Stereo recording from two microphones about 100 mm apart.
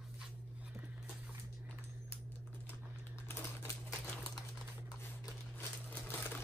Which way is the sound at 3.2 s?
25° left (ahead or behind).